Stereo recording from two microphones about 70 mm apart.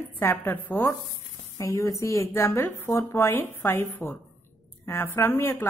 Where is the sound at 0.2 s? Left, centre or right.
Left.